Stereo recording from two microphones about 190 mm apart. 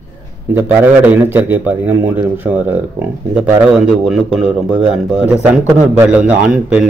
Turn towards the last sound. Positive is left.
turn(degrees=-5)  # may be behind; listen again after turning